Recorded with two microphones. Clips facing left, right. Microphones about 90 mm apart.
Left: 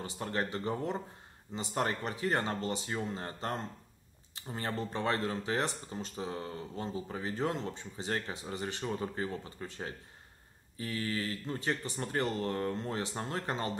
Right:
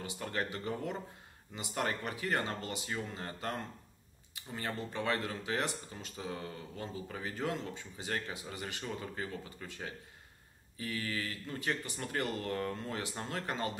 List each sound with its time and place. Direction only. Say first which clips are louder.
0.0 s speech: left 2 dB; 30° left (ahead or behind)